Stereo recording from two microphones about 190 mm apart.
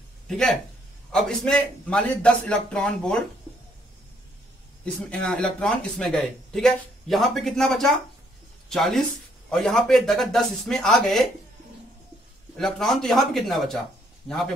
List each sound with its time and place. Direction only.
0.3 s speech: 5° left (ahead or behind)
5.2 s speech: 5° left (ahead or behind)
12.5 s speech: centre (ahead or behind)